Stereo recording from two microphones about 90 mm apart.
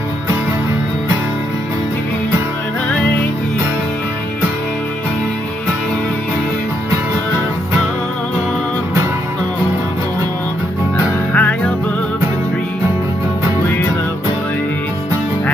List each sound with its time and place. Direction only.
11.3 s music: 15° left (ahead or behind)